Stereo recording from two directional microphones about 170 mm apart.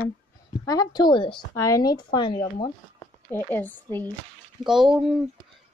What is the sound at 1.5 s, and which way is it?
Speech, 20° left (ahead or behind).